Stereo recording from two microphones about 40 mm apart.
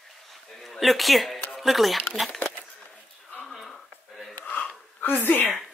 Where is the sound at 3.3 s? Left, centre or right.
Centre.